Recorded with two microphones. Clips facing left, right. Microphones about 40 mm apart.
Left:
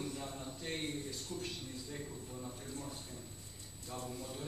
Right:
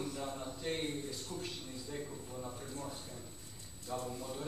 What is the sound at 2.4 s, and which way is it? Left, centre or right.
Speech, right.